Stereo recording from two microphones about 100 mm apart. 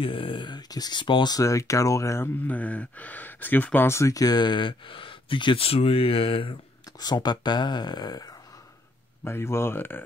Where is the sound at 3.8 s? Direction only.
30° left (ahead or behind); by 6.5 s 65° left (ahead or behind).